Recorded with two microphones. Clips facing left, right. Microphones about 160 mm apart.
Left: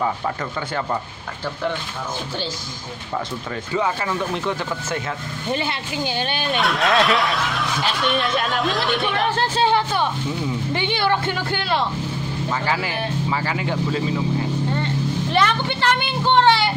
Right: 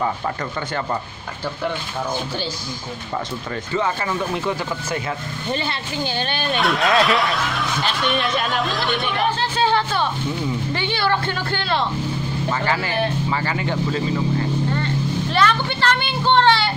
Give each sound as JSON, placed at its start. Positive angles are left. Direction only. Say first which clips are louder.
{"t": 3.7, "sound": "speech", "louder": "even", "side_deg": 5}
{"t": 5.5, "sound": "speech", "louder": "left 1 dB", "side_deg": 15}
{"t": 6.5, "sound": "speech", "louder": "right 1 dB", "side_deg": 0}
{"t": 9.6, "sound": "speech", "louder": "even", "side_deg": 15}
{"t": 15.3, "sound": "a sound", "louder": "right 1 dB", "side_deg": 20}